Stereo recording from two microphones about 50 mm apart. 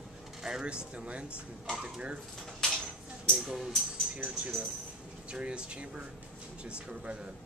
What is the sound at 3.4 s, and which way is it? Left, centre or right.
Speech, centre.